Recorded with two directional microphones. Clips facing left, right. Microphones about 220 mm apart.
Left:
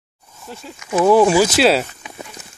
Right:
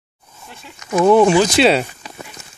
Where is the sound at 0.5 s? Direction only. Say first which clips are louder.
Left 7 dB; 40° left (ahead or behind).